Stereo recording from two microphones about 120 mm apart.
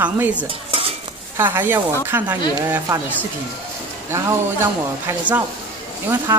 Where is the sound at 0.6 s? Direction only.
50° right (ahead or behind).